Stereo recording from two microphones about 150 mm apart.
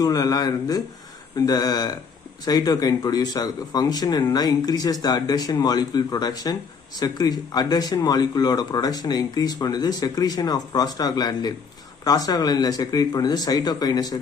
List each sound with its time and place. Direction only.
0.0 s speech: 25° left (ahead or behind)